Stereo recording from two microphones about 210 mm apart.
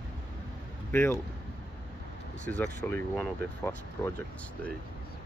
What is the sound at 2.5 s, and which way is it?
Speech, 10° left (ahead or behind).